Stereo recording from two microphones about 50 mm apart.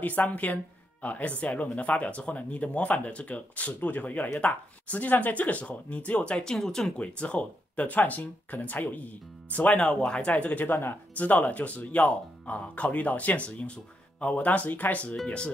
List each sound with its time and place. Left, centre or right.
0.0 s speech: left; by 6.9 s centre
7.0 s speech: left
9.8 s speech: centre; by 11.0 s left
11.1 s speech: left